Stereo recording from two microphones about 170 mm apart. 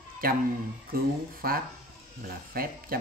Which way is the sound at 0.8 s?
60° right (ahead or behind).